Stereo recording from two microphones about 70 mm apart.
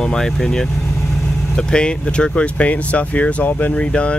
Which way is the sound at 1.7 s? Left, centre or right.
Centre.